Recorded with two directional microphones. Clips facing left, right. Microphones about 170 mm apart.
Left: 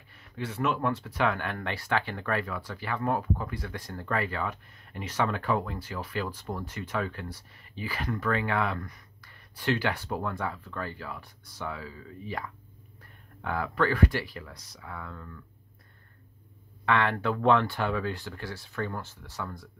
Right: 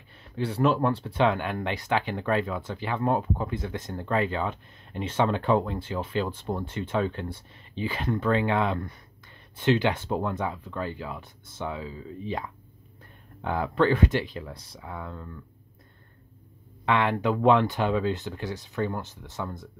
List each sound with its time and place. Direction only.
0.2 s speech: 30° right (ahead or behind)
16.8 s speech: 15° right (ahead or behind)